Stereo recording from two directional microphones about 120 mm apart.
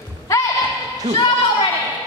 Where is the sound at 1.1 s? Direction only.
35° left (ahead or behind).